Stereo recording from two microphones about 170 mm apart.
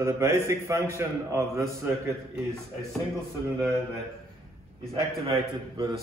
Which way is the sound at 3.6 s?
20° right (ahead or behind).